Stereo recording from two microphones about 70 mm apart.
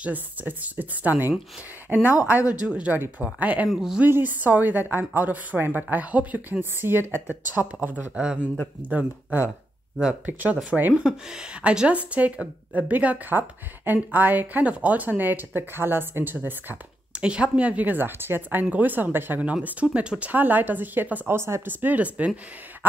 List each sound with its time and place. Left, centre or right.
0.0 s a woman's voice: right
1.9 s a woman's voice: centre
3.6 s speech: centre
4.0 s a woman's voice: right
17.2 s a woman's voice: centre; by 21.6 s right
21.6 s a woman's voice: right